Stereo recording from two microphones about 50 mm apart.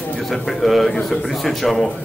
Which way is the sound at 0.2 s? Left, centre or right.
Centre.